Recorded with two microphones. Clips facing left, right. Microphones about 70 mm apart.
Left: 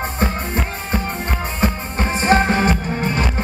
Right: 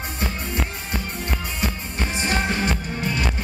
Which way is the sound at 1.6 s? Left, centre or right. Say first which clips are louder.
Left 9 dB; left.